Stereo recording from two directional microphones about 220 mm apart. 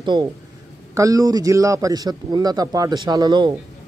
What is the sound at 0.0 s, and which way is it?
Speech, 20° right (ahead or behind).